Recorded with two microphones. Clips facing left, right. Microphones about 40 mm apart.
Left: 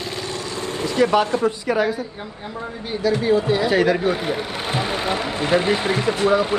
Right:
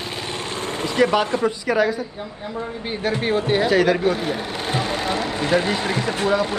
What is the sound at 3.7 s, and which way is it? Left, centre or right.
Speech, centre.